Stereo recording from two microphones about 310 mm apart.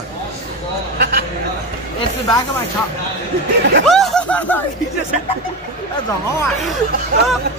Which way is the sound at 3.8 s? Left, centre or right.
Centre.